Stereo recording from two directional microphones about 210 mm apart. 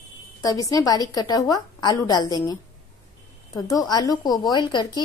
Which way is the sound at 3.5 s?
15° left (ahead or behind).